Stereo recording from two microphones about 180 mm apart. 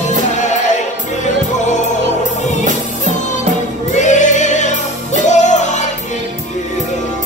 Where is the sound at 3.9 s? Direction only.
40° left (ahead or behind).